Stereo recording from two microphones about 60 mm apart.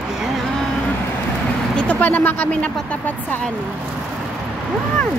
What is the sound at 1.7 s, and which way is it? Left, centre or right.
Speech, left.